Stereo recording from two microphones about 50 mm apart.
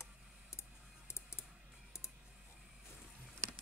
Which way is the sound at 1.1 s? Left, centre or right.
Left.